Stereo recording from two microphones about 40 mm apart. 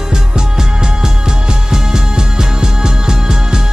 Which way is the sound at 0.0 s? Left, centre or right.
Centre.